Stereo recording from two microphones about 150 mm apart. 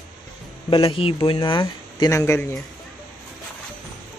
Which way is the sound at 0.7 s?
35° left (ahead or behind).